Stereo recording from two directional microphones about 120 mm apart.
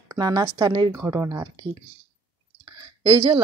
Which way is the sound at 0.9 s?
20° right (ahead or behind).